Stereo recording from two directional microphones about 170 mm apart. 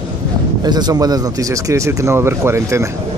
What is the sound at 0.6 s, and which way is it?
Speech, 25° right (ahead or behind).